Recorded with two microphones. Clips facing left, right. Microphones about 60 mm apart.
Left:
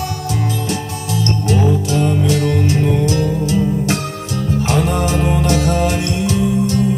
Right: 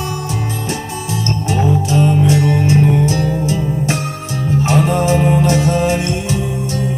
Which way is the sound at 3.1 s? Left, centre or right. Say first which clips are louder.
Even; right.